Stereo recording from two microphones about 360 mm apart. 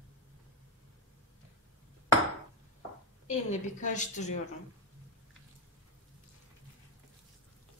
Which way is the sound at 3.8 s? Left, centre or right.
Left.